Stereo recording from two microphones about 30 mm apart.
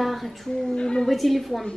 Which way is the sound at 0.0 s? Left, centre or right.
Centre.